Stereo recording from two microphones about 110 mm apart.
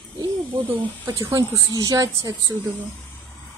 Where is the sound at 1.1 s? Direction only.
25° right (ahead or behind).